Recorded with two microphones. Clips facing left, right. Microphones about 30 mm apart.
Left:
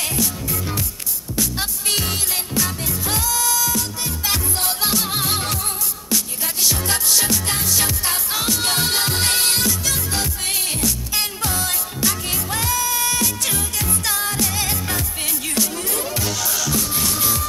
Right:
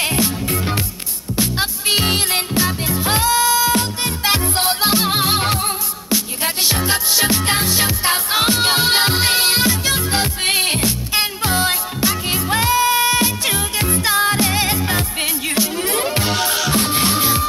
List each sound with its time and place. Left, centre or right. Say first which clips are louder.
0.0 s music: right 5 dB; right
15.9 s music: right 6 dB; right